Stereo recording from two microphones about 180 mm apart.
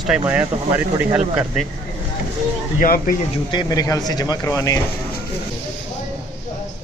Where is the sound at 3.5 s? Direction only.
20° left (ahead or behind).